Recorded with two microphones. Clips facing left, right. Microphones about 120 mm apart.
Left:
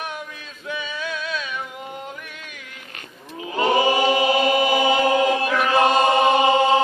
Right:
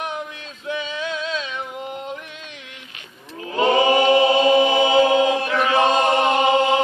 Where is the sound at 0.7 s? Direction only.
20° right (ahead or behind).